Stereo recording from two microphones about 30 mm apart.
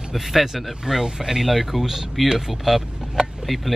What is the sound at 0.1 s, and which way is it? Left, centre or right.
Speech, centre.